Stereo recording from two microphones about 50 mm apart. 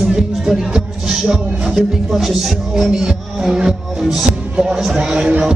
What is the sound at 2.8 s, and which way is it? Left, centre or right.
Speech, centre.